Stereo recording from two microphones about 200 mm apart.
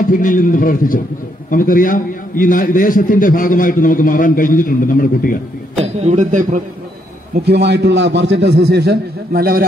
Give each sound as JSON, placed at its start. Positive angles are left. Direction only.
{"t": 0.1, "sound": "a man's voice", "side_deg": 40}
{"t": 5.9, "sound": "a man's voice", "side_deg": -35}
{"t": 7.4, "sound": "a man's voice", "side_deg": -55}